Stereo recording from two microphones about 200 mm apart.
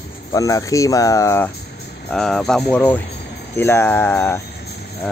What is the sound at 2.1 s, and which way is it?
Speech, centre (ahead or behind).